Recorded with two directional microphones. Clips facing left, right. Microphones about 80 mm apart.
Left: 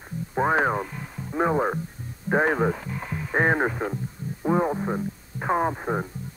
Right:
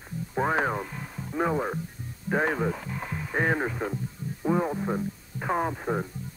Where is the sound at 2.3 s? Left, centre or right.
Left.